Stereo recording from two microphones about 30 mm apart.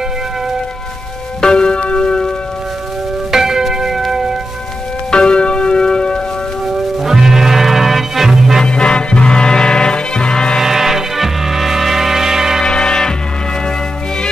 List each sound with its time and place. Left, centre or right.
1.4 s music: left
3.3 s church bell: centre
3.9 s music: centre
5.1 s music: left
7.1 s music: centre
8.6 s music: left
10.6 s music: centre
12.6 s music: left